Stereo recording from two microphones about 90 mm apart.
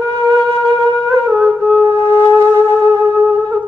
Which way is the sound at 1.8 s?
25° left (ahead or behind).